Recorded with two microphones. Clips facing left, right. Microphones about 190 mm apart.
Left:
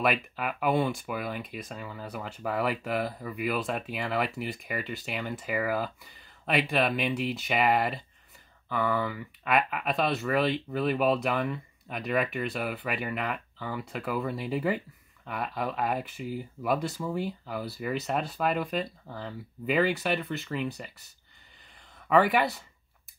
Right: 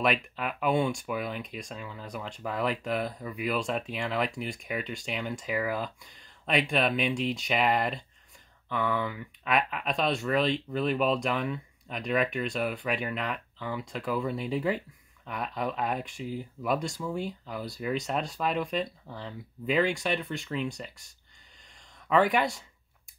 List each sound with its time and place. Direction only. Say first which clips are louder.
0.0 s speech: even; 5° left (ahead or behind)